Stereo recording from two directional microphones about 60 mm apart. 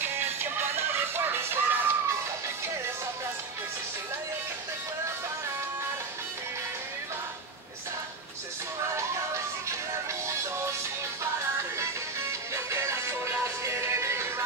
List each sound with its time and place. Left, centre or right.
0.0 s music: right
11.8 s music: right